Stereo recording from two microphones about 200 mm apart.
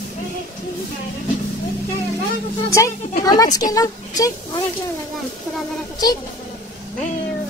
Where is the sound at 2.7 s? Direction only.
15° left (ahead or behind).